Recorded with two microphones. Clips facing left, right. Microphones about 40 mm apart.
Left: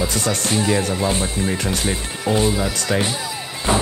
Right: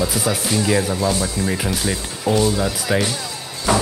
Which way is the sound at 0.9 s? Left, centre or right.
Left.